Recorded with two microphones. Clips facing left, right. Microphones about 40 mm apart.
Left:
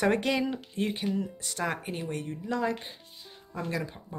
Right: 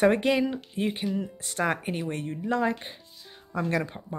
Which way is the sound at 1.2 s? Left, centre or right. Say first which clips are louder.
Right 3 dB; right.